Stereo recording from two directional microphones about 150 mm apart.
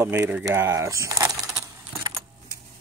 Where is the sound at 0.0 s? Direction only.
20° right (ahead or behind).